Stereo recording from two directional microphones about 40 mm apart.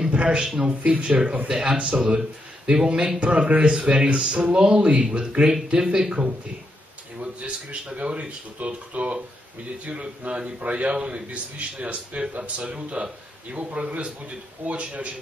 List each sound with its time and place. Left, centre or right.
0.1 s a man's voice: right
1.5 s a man's voice: right
3.7 s a man's voice: right